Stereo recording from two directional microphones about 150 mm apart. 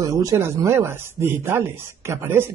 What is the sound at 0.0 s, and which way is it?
Speech, 20° right (ahead or behind).